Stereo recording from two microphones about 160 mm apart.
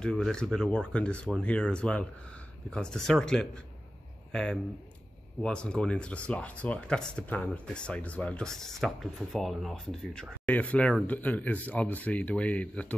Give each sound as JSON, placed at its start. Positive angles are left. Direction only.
{"t": 0.0, "sound": "speech", "side_deg": 5}